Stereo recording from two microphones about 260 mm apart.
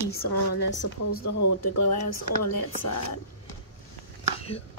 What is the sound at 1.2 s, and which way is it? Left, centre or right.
Speech, left.